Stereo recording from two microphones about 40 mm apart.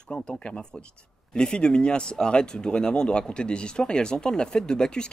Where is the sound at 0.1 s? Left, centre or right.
Centre.